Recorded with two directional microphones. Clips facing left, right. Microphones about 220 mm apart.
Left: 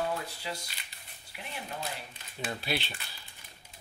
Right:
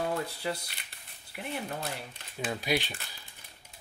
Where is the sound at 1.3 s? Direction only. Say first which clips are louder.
Right 6 dB; 50° right (ahead or behind).